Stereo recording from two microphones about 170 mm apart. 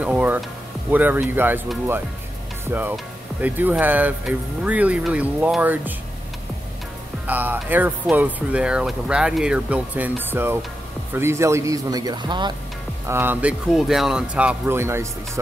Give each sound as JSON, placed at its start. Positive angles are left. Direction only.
{"t": 0.0, "sound": "speech", "side_deg": -10}
{"t": 2.7, "sound": "speech", "side_deg": -10}
{"t": 7.2, "sound": "speech", "side_deg": -10}
{"t": 13.1, "sound": "speech", "side_deg": -10}